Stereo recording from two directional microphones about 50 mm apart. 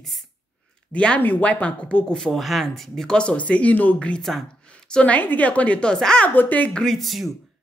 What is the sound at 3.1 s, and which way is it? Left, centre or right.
Speech, left.